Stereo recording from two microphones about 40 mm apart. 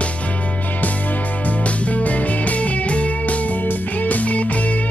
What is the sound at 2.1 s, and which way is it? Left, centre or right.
Music, left.